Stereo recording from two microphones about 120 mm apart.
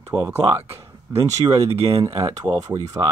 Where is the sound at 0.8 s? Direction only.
65° right (ahead or behind).